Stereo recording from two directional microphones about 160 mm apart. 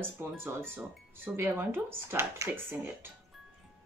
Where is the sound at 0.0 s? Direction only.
15° right (ahead or behind).